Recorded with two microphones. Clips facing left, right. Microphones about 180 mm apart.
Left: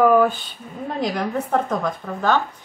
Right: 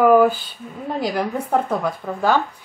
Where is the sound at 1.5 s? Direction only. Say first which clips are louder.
Right 3 dB; 10° right (ahead or behind).